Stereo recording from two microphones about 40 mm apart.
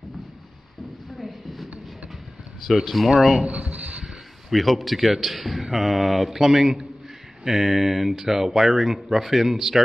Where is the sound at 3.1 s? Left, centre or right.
Centre.